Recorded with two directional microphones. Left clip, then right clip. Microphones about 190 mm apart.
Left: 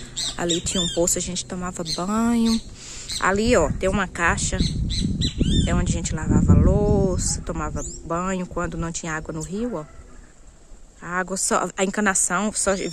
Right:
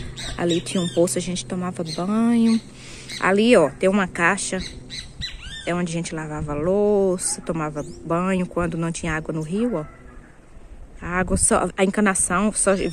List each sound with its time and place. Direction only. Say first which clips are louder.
0.2 s squawk: left 6 dB; 65° left (ahead or behind)
0.9 s speech: right 2 dB; 10° left (ahead or behind)
4.8 s squawk: left 5 dB; 60° left (ahead or behind)
5.7 s speech: right 2 dB; 5° left (ahead or behind)
11.1 s speech: right 2 dB; 5° left (ahead or behind)